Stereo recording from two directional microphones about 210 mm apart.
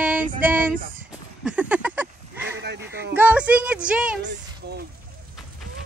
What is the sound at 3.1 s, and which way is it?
Music, 5° right (ahead or behind).